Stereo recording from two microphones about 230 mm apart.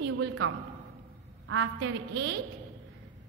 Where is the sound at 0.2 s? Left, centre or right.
Right.